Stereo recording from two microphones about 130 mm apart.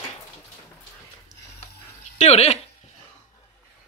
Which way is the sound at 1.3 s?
30° right (ahead or behind).